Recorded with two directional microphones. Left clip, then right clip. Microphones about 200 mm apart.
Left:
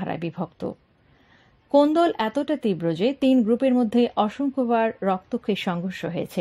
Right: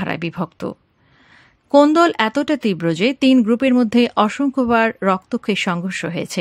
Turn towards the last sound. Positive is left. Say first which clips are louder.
# right 5 dB
turn(degrees=-20)  # may be behind; listen again after turning